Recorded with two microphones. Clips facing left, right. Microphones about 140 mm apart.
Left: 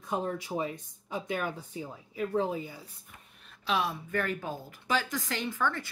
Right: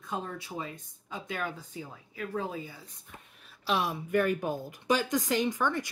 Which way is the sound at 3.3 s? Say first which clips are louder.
Even; 5° right (ahead or behind).